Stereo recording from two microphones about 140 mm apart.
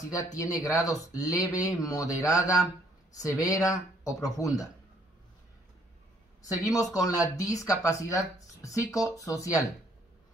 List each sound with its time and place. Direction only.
0.3 s speech: 25° left (ahead or behind)
6.4 s speech: 25° left (ahead or behind)